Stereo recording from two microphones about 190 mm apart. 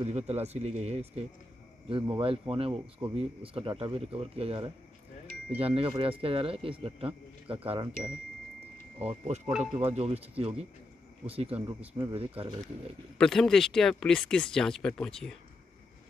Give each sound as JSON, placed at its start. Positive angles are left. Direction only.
{"t": 0.0, "sound": "a man's voice", "side_deg": -35}
{"t": 9.5, "sound": "speech", "side_deg": -5}
{"t": 9.8, "sound": "speech", "side_deg": -30}
{"t": 13.2, "sound": "speech", "side_deg": 0}